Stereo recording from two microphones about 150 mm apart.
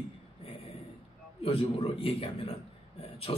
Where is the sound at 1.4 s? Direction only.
40° left (ahead or behind).